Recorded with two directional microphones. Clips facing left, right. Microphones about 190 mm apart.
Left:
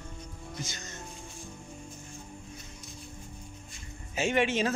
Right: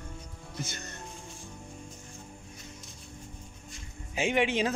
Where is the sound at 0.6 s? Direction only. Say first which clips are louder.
Right 1 dB; 60° right (ahead or behind).